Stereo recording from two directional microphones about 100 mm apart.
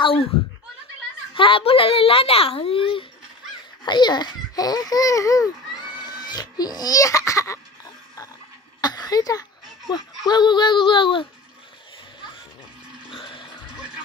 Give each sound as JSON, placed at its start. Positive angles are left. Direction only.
{"t": 0.0, "sound": "speech", "side_deg": 70}
{"t": 1.3, "sound": "a child's voice", "side_deg": 60}
{"t": 3.8, "sound": "speech", "side_deg": 45}
{"t": 5.9, "sound": "laughter", "side_deg": 45}
{"t": 8.8, "sound": "speech", "side_deg": 40}
{"t": 13.1, "sound": "music", "side_deg": 55}